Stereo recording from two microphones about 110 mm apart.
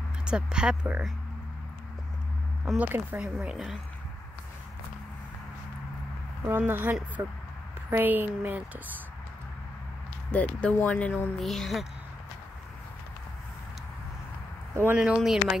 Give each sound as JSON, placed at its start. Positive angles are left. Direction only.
{"t": 0.2, "sound": "a woman's voice", "side_deg": -10}
{"t": 2.6, "sound": "a woman's voice", "side_deg": -10}
{"t": 3.3, "sound": "speech", "side_deg": -5}
{"t": 6.4, "sound": "a woman's voice", "side_deg": -20}
{"t": 10.3, "sound": "speech", "side_deg": 10}
{"t": 14.9, "sound": "a woman's voice", "side_deg": -10}